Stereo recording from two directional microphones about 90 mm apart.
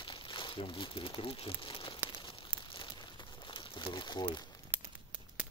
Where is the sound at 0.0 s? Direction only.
65° left (ahead or behind).